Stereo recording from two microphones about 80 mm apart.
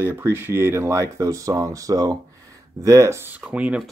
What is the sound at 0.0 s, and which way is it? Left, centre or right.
Speech, right.